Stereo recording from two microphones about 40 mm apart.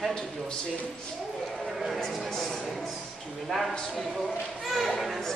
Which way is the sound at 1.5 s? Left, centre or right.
Centre.